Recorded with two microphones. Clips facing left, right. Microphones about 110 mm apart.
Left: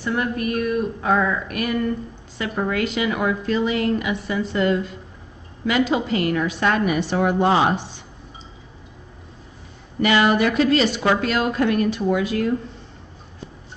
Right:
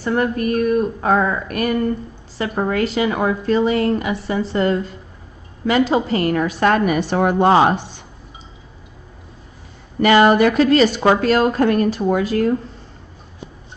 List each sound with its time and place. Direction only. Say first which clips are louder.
0.0 s speech: right 4 dB; 45° right (ahead or behind)
10.0 s speech: right 5 dB; 45° right (ahead or behind)